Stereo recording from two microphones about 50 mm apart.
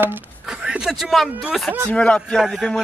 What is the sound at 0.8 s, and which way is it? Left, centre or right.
Speech, centre.